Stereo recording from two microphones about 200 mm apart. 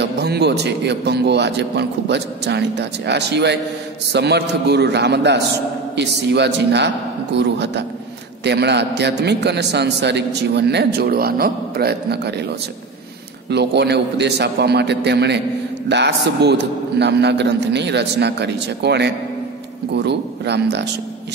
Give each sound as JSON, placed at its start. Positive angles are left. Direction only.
{"t": 0.0, "sound": "a man's voice", "side_deg": -55}
{"t": 13.5, "sound": "a man's voice", "side_deg": -55}